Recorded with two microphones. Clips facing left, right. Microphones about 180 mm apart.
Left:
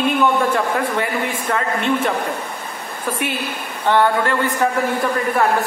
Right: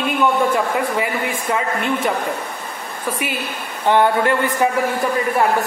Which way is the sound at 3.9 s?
15° right (ahead or behind).